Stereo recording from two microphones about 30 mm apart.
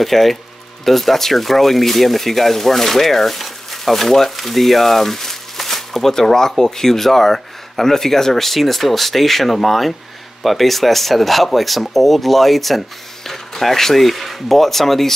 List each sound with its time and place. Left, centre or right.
0.0 s speech: centre